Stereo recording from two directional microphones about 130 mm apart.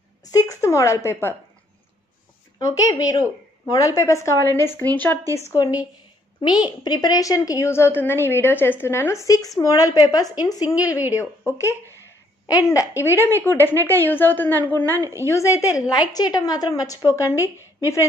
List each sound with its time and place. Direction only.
0.3 s a woman's voice: 25° left (ahead or behind)
2.6 s a woman's voice: 25° left (ahead or behind)
5.2 s speech: 25° right (ahead or behind)
6.4 s a woman's voice: 35° left (ahead or behind); by 15.0 s 15° left (ahead or behind)
15.0 s speech: 20° right (ahead or behind)
15.2 s a woman's voice: 25° left (ahead or behind)